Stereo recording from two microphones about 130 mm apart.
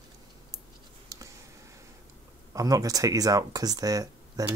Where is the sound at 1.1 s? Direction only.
25° right (ahead or behind).